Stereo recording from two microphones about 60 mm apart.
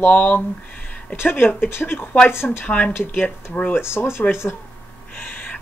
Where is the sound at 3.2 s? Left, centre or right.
Left.